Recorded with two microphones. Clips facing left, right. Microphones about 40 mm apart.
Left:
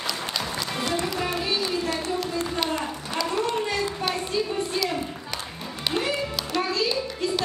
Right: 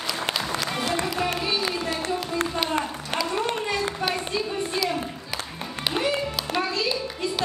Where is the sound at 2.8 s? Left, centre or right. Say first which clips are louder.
Right 1 dB; centre.